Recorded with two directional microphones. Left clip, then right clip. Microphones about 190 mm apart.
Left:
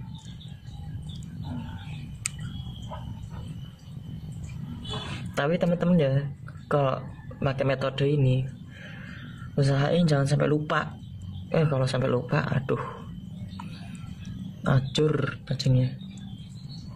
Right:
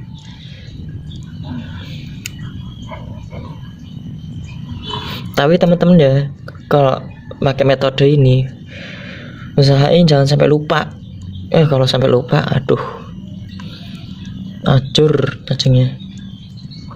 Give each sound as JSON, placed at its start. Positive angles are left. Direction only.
{"t": 5.3, "sound": "speech", "side_deg": -30}
{"t": 9.6, "sound": "speech", "side_deg": -25}
{"t": 14.6, "sound": "speech", "side_deg": -20}